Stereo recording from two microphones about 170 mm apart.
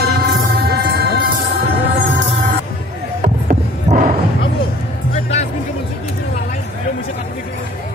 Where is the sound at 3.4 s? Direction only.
55° right (ahead or behind).